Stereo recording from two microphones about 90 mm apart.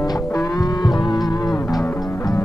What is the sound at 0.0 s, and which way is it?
Music, 45° left (ahead or behind).